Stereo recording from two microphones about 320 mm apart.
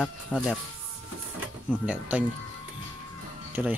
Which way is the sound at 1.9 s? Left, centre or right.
Centre.